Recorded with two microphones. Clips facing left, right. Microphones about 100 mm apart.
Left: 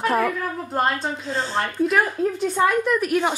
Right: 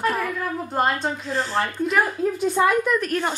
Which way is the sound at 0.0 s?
30° left (ahead or behind).